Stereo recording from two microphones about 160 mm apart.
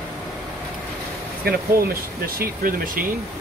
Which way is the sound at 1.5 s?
70° right (ahead or behind).